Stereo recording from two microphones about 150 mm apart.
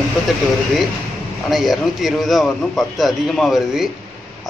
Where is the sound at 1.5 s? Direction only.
Centre (ahead or behind).